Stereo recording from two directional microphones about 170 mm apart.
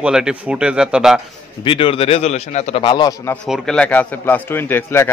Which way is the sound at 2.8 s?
30° left (ahead or behind).